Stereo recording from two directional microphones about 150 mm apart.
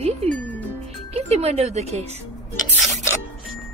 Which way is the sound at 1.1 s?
45° right (ahead or behind).